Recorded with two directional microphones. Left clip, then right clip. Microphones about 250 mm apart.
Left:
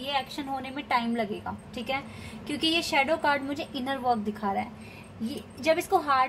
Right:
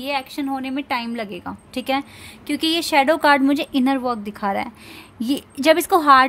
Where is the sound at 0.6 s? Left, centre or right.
Right.